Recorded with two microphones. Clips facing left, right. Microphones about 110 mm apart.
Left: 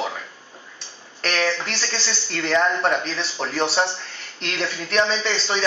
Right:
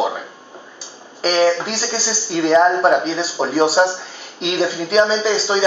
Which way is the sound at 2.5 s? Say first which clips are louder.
Right 7 dB; 25° right (ahead or behind).